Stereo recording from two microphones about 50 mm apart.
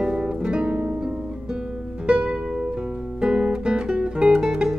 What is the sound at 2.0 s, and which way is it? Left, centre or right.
Music, centre.